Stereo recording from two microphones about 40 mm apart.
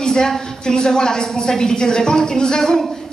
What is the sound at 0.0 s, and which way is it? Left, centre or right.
A woman's voice, centre.